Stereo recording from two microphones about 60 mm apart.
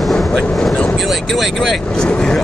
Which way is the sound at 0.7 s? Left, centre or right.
Centre.